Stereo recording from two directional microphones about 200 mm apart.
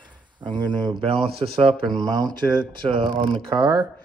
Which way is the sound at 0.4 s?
20° right (ahead or behind).